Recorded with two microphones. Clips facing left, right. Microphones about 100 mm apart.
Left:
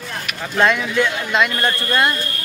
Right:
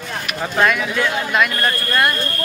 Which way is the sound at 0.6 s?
25° left (ahead or behind).